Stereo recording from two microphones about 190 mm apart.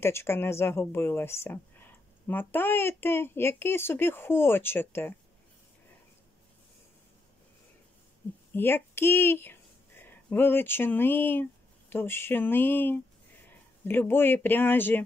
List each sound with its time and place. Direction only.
0.0 s speech: 15° left (ahead or behind)
8.5 s speech: 10° left (ahead or behind)